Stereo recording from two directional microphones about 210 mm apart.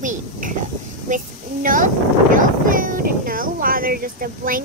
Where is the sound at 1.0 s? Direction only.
40° right (ahead or behind).